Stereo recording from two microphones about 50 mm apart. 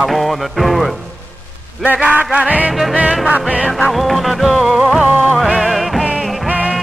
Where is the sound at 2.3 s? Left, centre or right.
Right.